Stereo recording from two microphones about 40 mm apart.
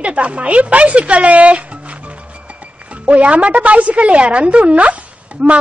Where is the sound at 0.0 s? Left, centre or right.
Right.